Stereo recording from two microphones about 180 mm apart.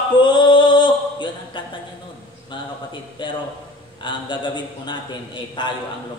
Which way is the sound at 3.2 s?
25° left (ahead or behind).